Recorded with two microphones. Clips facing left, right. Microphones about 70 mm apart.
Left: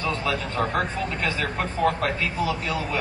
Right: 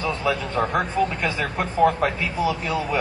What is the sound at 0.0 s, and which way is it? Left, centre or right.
A man's voice, centre.